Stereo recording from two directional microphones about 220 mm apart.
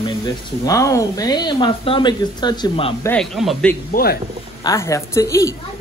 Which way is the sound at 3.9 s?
45° left (ahead or behind).